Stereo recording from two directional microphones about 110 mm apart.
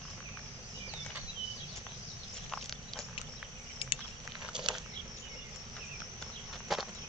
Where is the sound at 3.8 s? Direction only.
55° left (ahead or behind).